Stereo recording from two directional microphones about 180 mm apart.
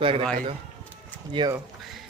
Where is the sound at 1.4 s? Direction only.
25° right (ahead or behind).